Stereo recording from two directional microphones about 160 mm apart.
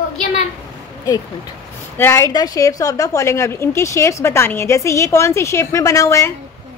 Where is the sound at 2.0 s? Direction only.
15° left (ahead or behind).